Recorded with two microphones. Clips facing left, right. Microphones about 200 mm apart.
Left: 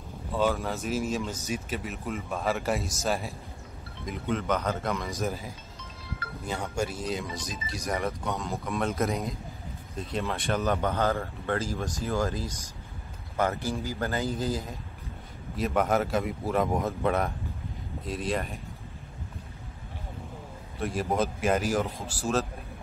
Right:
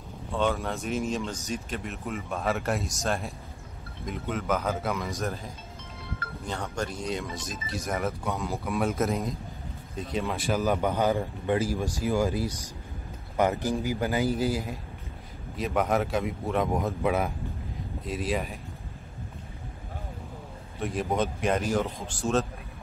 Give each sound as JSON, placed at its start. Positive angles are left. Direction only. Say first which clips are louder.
{"t": 0.3, "sound": "speech", "louder": "even", "side_deg": 5}
{"t": 5.8, "sound": "a sound", "louder": "right 2 dB", "side_deg": -55}
{"t": 6.4, "sound": "speech", "louder": "left 2 dB", "side_deg": 10}
{"t": 15.5, "sound": "speech", "louder": "even", "side_deg": 0}
{"t": 20.8, "sound": "speech", "louder": "even", "side_deg": 0}